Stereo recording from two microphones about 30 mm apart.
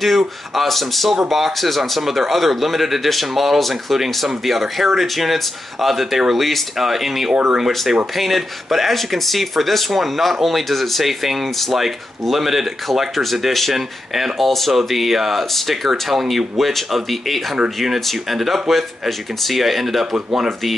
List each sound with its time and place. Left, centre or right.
0.0 s speech: centre
7.4 s speech: centre
8.2 s speech: centre